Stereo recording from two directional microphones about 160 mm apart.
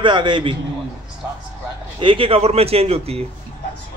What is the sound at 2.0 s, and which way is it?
A man's voice, 35° right (ahead or behind).